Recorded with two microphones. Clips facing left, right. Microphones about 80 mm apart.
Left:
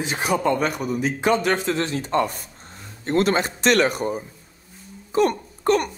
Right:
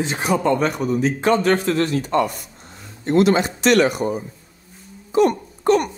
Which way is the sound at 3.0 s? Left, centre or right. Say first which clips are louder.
Right 4 dB; left.